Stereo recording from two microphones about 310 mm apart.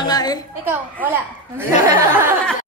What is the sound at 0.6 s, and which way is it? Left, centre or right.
Speech, centre.